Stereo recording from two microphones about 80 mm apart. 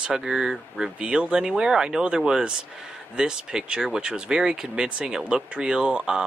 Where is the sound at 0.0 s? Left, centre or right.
Centre.